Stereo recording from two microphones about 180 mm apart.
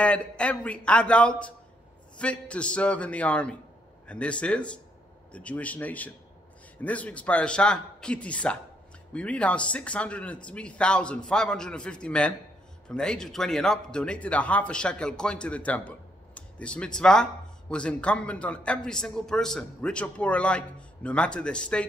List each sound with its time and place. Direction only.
0.0 s a man's voice: 5° left (ahead or behind)